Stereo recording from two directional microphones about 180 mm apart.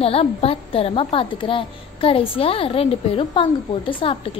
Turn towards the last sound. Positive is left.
turn(degrees=30)  # may be behind; listen again after turning